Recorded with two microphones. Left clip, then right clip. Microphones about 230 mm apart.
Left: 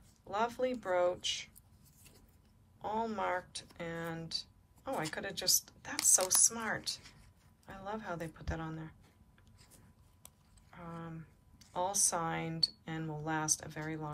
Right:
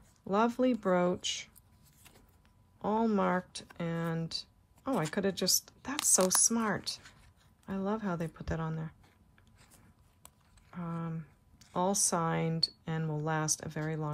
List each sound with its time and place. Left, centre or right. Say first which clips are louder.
0.3 s speech: right 5 dB; right
2.8 s speech: right 5 dB; right
10.2 s speech: right 2 dB; right